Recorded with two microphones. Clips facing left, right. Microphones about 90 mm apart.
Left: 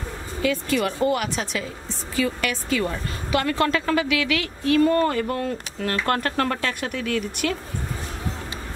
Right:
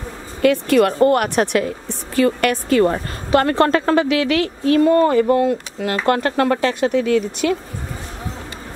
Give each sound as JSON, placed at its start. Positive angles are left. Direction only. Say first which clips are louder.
{"t": 0.4, "sound": "a woman's voice", "louder": "right 9 dB", "side_deg": -55}
{"t": 4.8, "sound": "speech", "louder": "right 7 dB", "side_deg": -20}